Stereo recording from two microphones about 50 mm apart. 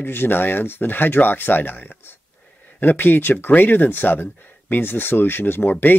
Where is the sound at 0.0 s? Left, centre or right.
Left.